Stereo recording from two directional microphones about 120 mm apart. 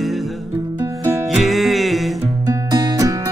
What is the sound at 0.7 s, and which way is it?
Music, 20° right (ahead or behind).